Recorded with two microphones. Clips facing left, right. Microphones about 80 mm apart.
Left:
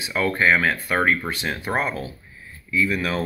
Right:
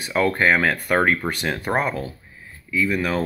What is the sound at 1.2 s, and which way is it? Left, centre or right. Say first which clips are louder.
Speech: right 2 dB; right.